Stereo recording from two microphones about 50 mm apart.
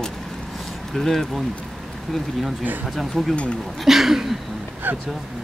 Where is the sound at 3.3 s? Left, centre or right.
Left.